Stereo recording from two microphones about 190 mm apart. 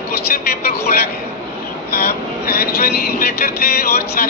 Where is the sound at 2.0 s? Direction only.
55° left (ahead or behind).